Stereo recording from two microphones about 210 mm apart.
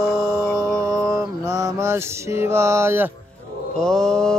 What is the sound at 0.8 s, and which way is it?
Mantra, 15° right (ahead or behind).